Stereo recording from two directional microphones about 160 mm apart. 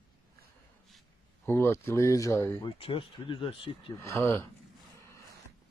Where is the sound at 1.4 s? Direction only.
15° left (ahead or behind).